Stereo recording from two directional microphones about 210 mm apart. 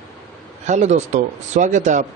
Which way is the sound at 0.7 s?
35° right (ahead or behind).